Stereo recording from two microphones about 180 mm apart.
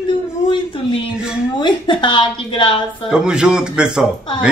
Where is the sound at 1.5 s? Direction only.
25° left (ahead or behind).